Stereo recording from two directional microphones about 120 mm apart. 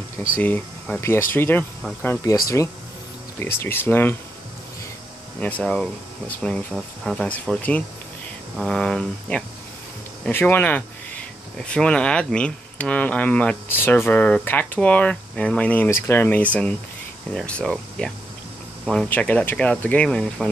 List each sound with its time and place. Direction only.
0.4 s speech: 10° left (ahead or behind)
5.4 s speech: 10° left (ahead or behind)